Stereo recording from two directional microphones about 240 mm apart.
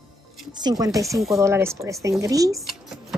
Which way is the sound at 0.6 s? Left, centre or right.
Centre.